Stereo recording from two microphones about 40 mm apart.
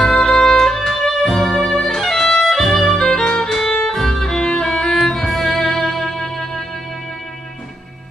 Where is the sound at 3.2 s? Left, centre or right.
Centre.